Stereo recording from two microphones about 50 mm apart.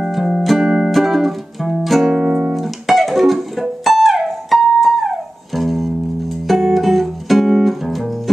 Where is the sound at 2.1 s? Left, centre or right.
Centre.